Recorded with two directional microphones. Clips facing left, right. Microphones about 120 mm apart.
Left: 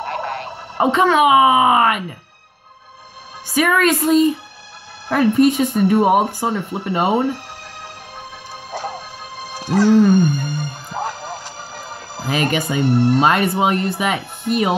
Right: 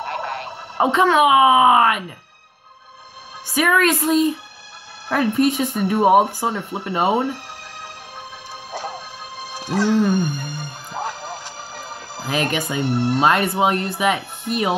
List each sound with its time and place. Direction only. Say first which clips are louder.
0.0 s a sound: left 2 dB; 5° right (ahead or behind)
3.5 s speech: left 2 dB; centre (ahead or behind)
9.5 s speech: left 5 dB; 40° left (ahead or behind)
10.4 s music: left 5 dB; 40° left (ahead or behind)
12.3 s speech: left 3 dB; 5° left (ahead or behind)
12.8 s speech: left 5 dB; 45° left (ahead or behind)
13.2 s speech: left 1 dB; centre (ahead or behind)